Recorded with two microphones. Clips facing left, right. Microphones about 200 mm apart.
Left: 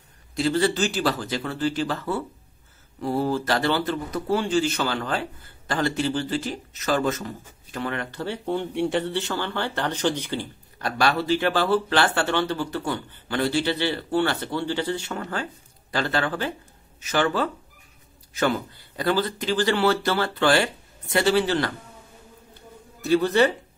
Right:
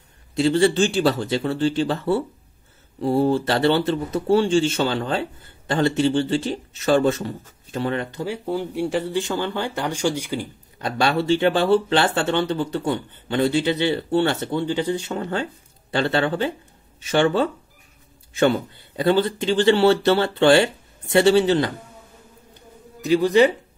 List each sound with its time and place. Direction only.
0.4 s speech: 25° right (ahead or behind)
8.2 s speech: 5° right (ahead or behind)
10.8 s speech: 25° right (ahead or behind)
23.0 s speech: 15° right (ahead or behind)